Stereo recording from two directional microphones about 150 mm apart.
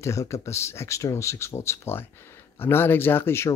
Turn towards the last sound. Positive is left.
turn(degrees=15)  # may be behind; listen again after turning